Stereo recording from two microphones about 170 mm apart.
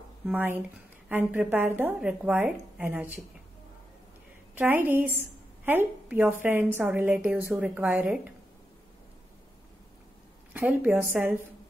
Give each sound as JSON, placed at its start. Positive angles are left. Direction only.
{"t": 0.3, "sound": "a woman's voice", "side_deg": -10}
{"t": 4.6, "sound": "a woman's voice", "side_deg": -10}
{"t": 10.5, "sound": "a woman's voice", "side_deg": -10}